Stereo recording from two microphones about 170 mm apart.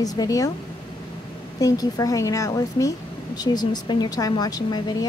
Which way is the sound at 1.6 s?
20° left (ahead or behind).